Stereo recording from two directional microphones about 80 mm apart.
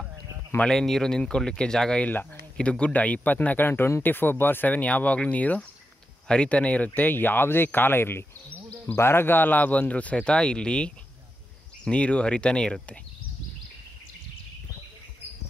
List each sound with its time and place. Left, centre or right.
0.6 s speech: centre